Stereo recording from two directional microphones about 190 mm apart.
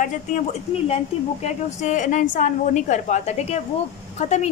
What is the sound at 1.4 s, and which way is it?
A woman's voice, 40° left (ahead or behind).